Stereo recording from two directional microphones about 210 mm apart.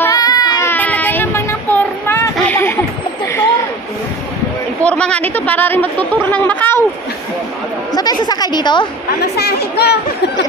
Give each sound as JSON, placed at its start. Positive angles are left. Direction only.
{"t": 0.0, "sound": "child singing", "side_deg": 15}
{"t": 4.8, "sound": "speech", "side_deg": 5}
{"t": 7.9, "sound": "speech", "side_deg": 20}
{"t": 9.2, "sound": "speech", "side_deg": 50}